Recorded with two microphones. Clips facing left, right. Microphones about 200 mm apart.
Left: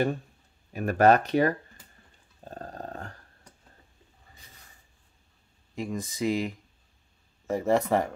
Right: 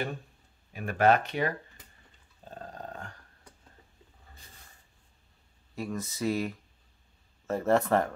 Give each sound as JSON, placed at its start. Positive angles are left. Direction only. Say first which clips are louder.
{"t": 0.7, "sound": "speech", "louder": "left 4 dB", "side_deg": 40}
{"t": 2.4, "sound": "dog", "louder": "left 3 dB", "side_deg": 40}
{"t": 5.8, "sound": "speech", "louder": "left 3 dB", "side_deg": 15}